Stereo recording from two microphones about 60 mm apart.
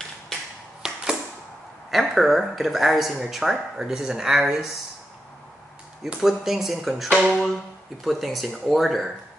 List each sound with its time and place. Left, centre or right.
0.8 s a sound: centre
1.9 s speech: centre
6.2 s speech: centre